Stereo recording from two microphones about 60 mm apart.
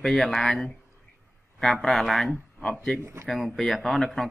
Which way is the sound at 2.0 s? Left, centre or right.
Centre.